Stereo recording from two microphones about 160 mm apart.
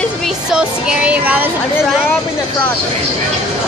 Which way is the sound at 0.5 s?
5° right (ahead or behind).